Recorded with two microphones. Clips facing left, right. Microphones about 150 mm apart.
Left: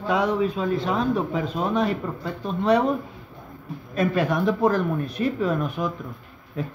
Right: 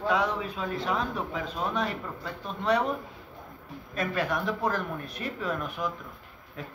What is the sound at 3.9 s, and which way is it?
Speech, 20° left (ahead or behind).